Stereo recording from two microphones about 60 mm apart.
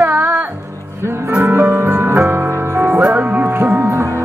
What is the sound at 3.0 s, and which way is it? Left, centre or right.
Music, right.